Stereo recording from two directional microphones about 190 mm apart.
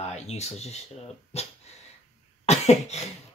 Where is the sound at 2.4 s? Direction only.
35° left (ahead or behind).